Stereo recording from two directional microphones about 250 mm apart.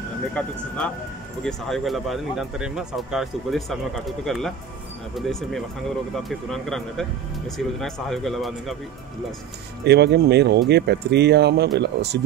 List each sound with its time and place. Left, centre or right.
0.3 s speech: centre
9.8 s speech: right